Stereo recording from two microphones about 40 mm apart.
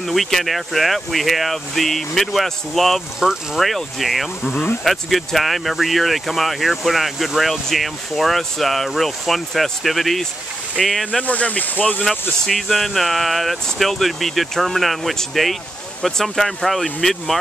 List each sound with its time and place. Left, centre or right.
0.0 s speech: centre
11.2 s speech: left
12.0 s speech: centre